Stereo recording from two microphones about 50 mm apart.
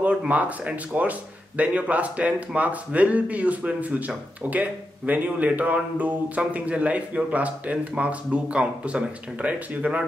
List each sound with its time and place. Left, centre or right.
0.3 s speech: right